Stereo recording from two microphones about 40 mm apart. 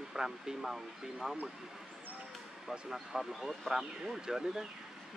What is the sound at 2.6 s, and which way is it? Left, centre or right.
Speech, centre.